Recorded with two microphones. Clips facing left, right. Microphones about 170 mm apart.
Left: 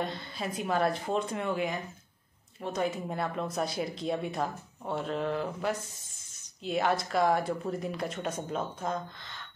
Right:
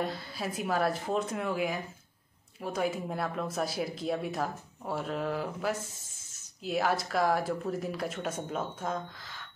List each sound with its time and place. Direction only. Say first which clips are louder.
0.0 s speech: even; 5° right (ahead or behind)